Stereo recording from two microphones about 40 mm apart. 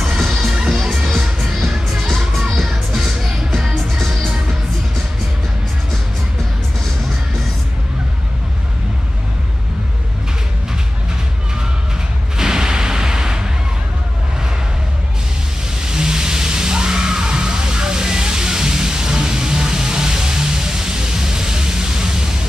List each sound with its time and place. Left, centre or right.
0.2 s music: centre
3.6 s music: centre
12.4 s a sound: centre
15.8 s music: centre